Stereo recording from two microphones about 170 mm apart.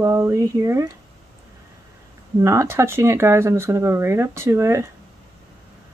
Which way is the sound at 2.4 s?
15° right (ahead or behind).